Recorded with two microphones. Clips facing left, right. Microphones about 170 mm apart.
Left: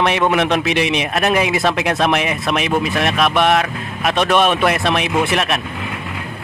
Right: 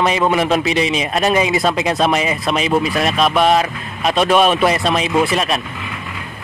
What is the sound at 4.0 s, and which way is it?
Speech, 15° right (ahead or behind).